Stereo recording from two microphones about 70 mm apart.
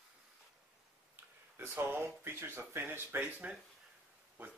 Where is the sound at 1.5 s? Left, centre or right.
Right.